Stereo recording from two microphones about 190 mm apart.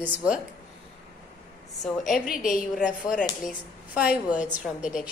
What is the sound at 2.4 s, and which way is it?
Speech, 45° left (ahead or behind).